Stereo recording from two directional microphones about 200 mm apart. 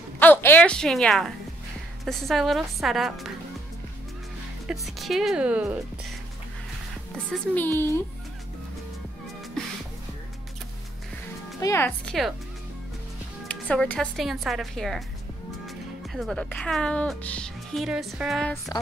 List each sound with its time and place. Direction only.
0.2 s a woman's voice: 10° left (ahead or behind)
4.6 s speech: centre (ahead or behind)
7.2 s a woman's voice: 5° left (ahead or behind)
11.6 s speech: 10° left (ahead or behind)
13.5 s speech: 5° left (ahead or behind)
18.7 s a woman's voice: 20° left (ahead or behind)